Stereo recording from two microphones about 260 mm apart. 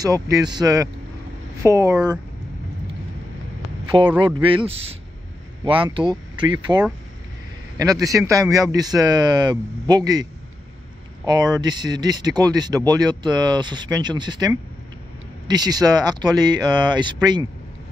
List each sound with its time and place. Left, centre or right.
0.0 s speech: centre
4.1 s speech: centre
7.9 s speech: centre
11.2 s speech: centre